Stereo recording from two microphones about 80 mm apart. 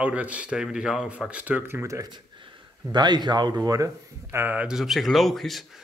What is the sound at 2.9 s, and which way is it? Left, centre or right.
Speech, right.